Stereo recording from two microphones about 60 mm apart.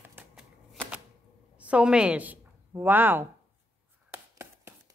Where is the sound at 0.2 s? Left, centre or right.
Right.